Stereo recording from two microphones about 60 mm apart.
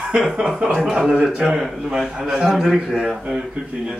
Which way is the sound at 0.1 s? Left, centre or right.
Centre.